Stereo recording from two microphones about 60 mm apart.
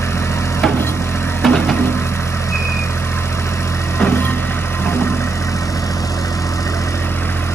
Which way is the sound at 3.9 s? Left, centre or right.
Left.